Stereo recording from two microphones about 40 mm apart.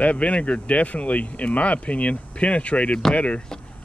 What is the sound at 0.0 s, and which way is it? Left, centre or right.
Speech, left.